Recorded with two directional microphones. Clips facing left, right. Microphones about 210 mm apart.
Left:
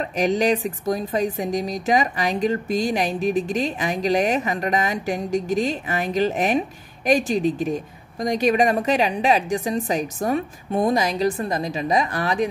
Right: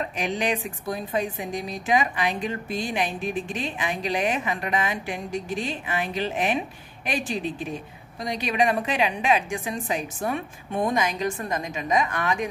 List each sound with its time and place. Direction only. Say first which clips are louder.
0.1 s speech: left 7 dB; 40° left (ahead or behind)